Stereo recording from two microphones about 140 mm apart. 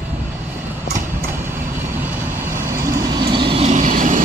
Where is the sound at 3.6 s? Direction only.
65° right (ahead or behind).